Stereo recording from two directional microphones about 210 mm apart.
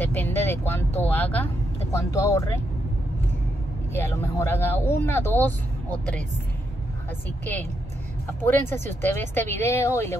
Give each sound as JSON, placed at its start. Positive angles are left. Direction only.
{"t": 0.0, "sound": "speech", "side_deg": 10}
{"t": 3.9, "sound": "speech", "side_deg": 10}
{"t": 8.4, "sound": "speech", "side_deg": 10}